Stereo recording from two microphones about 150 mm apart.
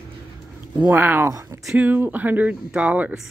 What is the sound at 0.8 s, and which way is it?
Speech, 10° right (ahead or behind).